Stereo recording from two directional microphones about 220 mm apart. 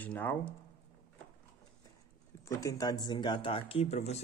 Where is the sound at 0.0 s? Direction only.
10° left (ahead or behind).